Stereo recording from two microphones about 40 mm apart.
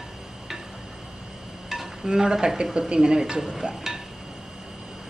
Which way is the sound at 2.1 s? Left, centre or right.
Centre.